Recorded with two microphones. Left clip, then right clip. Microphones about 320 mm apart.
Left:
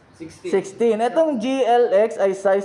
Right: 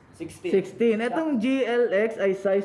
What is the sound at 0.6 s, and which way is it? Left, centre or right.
Speech, centre.